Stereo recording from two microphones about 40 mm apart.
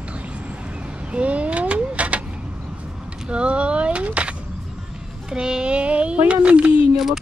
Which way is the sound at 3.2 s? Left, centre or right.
Right.